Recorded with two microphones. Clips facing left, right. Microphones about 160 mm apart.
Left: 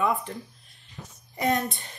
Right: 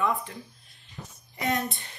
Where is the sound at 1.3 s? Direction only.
40° left (ahead or behind).